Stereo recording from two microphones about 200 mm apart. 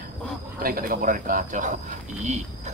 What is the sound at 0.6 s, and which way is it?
Speech, 45° right (ahead or behind).